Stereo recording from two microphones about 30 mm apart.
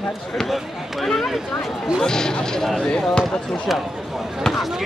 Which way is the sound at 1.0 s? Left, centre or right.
Centre.